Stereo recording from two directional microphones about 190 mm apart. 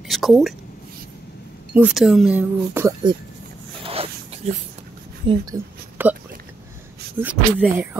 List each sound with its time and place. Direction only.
0.1 s a woman's voice: centre (ahead or behind)
1.7 s speech: 5° right (ahead or behind)
3.8 s zipper: 30° right (ahead or behind)
4.4 s speech: 35° right (ahead or behind)
5.2 s a sound: 25° right (ahead or behind)
7.2 s speech: 10° right (ahead or behind)